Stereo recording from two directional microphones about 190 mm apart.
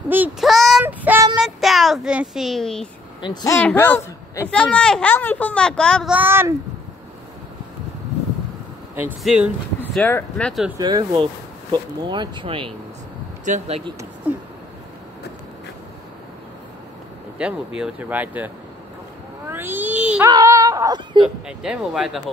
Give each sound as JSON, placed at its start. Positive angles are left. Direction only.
{"t": 0.1, "sound": "a sound", "side_deg": -5}
{"t": 0.8, "sound": "child singing", "side_deg": -10}
{"t": 1.3, "sound": "a sound", "side_deg": 0}
{"t": 3.2, "sound": "speech", "side_deg": 25}
{"t": 3.5, "sound": "speech", "side_deg": 10}
{"t": 6.1, "sound": "speech", "side_deg": -10}
{"t": 9.2, "sound": "speech", "side_deg": -5}
{"t": 9.8, "sound": "speech", "side_deg": 10}
{"t": 10.8, "sound": "speech", "side_deg": -20}
{"t": 17.4, "sound": "a child's voice", "side_deg": -5}
{"t": 20.2, "sound": "speech", "side_deg": -20}
{"t": 21.5, "sound": "speech", "side_deg": -5}